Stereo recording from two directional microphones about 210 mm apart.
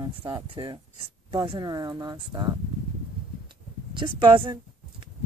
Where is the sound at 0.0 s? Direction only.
20° right (ahead or behind).